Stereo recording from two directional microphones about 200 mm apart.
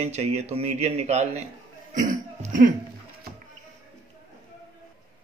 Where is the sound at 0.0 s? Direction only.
35° right (ahead or behind).